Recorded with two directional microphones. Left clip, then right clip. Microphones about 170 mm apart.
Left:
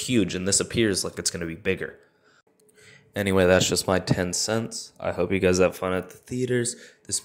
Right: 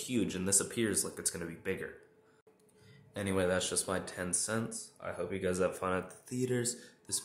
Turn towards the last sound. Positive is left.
turn(degrees=25)  # may be behind; listen again after turning